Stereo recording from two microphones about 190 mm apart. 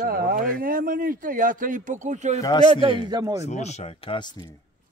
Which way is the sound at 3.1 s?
20° right (ahead or behind).